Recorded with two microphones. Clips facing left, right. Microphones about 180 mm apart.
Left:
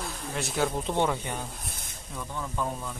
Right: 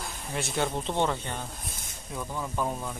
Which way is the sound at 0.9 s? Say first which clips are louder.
Left 1 dB; 10° left (ahead or behind).